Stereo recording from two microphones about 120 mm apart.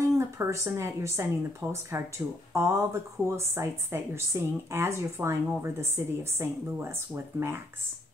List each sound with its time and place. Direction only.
0.0 s speech: 25° right (ahead or behind)